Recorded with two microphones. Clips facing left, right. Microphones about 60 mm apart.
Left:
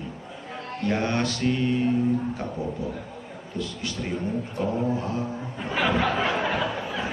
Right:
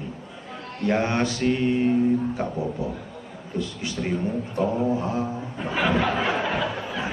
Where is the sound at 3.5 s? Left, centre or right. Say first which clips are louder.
Right 3 dB; right.